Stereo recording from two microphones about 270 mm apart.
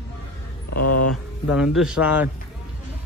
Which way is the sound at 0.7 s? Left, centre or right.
Left.